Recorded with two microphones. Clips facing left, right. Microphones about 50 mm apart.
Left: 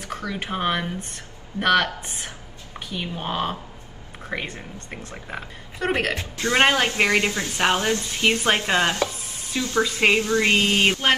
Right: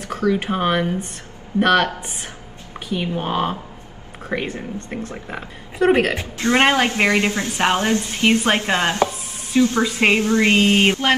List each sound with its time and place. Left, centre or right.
0.0 s speech: centre
2.9 s speech: centre
5.1 s speech: centre
6.3 s a woman's voice: right